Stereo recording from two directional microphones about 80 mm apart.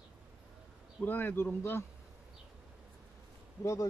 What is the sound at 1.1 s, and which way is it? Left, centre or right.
Speech, left.